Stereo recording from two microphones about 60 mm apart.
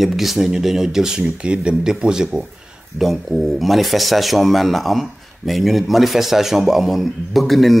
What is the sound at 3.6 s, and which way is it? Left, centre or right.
A man's voice, centre.